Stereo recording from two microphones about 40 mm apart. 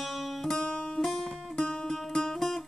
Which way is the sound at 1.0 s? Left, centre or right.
Centre.